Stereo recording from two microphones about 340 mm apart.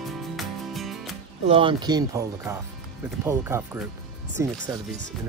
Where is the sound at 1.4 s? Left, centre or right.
Centre.